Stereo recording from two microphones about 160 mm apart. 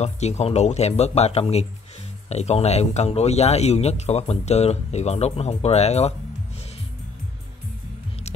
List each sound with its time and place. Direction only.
0.0 s speech: 45° left (ahead or behind)